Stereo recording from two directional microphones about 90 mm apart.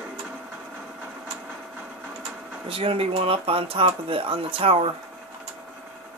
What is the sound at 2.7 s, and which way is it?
Speech, 90° right.